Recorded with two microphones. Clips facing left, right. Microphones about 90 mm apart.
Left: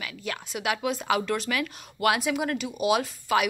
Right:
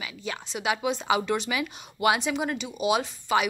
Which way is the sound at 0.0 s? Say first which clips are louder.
Even; centre (ahead or behind).